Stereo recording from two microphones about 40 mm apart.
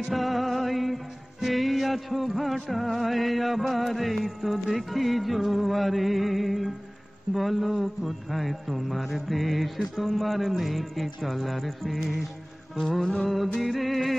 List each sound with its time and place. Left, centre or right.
0.1 s music: centre